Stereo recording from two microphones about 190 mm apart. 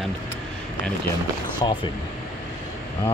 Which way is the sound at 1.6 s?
20° left (ahead or behind).